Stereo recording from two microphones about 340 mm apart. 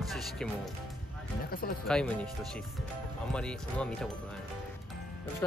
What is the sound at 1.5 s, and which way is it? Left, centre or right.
Speech, left.